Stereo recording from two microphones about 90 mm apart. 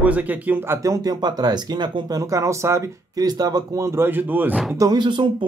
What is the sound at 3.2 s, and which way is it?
Speech, 45° right (ahead or behind).